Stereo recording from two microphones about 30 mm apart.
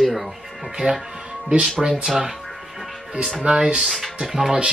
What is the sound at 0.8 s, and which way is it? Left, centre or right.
Speech, right.